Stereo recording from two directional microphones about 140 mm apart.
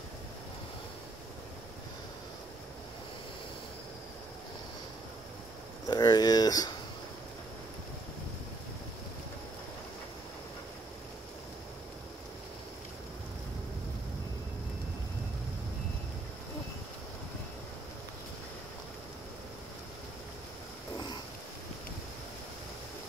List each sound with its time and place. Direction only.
5.9 s speech: 30° left (ahead or behind)